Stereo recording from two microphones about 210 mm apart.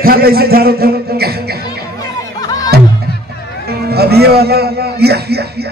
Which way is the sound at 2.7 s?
50° right (ahead or behind).